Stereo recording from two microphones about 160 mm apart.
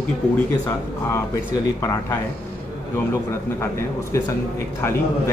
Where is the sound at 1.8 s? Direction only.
20° left (ahead or behind).